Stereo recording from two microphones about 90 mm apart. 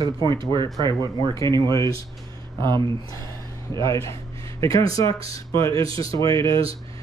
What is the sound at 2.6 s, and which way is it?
Speech, 55° right (ahead or behind).